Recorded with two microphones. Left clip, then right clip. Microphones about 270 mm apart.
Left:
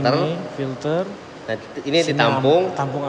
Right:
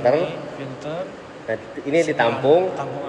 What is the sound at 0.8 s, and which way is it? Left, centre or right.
Speech, centre.